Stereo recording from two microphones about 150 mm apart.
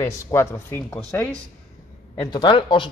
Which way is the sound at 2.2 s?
30° left (ahead or behind).